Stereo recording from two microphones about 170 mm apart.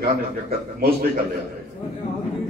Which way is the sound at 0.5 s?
60° right (ahead or behind).